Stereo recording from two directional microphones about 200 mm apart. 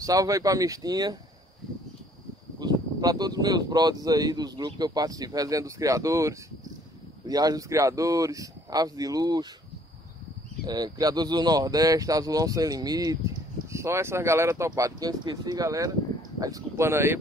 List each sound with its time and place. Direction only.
0.0 s speech: 15° right (ahead or behind)
2.6 s speech: 20° right (ahead or behind)
10.6 s speech: 20° right (ahead or behind)